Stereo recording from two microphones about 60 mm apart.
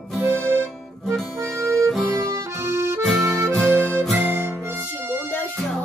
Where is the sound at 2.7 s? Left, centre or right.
Right.